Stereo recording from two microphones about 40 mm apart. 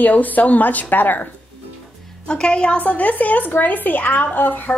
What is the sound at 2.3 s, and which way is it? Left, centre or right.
Speech, left.